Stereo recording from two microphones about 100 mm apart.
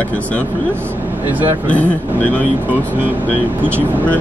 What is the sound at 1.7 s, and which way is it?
Speech, 15° left (ahead or behind).